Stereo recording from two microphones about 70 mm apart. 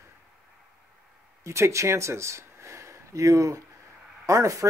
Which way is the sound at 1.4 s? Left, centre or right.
Right.